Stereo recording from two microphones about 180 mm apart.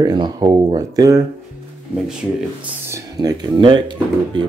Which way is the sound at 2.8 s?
15° right (ahead or behind).